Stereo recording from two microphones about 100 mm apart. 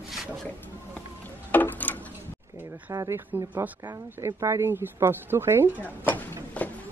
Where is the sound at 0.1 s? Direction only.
Centre (ahead or behind).